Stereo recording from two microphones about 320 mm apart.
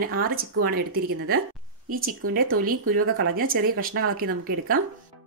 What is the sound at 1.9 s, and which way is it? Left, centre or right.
Speech, right.